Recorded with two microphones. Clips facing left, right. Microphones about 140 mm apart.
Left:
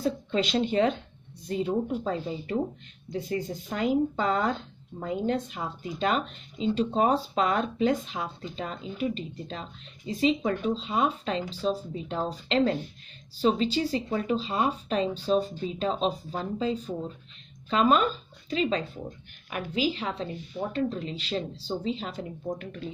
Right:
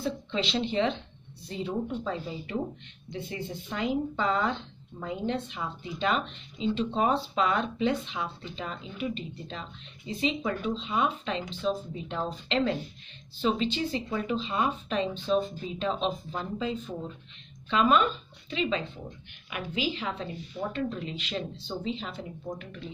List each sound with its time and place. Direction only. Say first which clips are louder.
0.0 s speech: left 4 dB; 45° left (ahead or behind)